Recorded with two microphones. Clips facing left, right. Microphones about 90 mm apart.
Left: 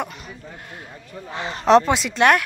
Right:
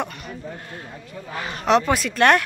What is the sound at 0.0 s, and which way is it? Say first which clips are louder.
Speech: right 1 dB; 10° left (ahead or behind).